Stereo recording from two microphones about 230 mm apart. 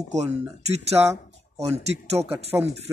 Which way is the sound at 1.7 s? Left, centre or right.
Right.